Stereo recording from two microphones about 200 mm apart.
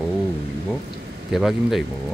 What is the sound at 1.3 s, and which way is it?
Speech, centre (ahead or behind).